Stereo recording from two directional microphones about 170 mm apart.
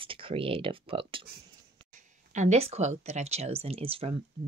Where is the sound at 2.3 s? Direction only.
40° right (ahead or behind).